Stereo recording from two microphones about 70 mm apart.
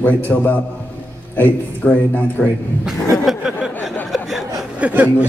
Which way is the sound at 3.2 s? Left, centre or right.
Centre.